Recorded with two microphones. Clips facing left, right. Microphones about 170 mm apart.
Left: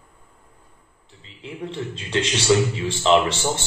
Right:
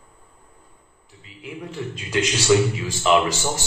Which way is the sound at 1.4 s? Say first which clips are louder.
Left 1 dB; 30° left (ahead or behind).